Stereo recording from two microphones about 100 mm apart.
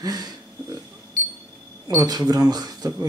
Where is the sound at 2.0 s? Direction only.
40° right (ahead or behind).